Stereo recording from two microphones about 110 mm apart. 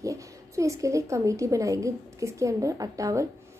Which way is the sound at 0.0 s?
30° right (ahead or behind).